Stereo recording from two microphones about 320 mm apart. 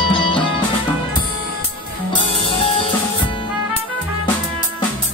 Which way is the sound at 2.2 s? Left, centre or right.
Centre.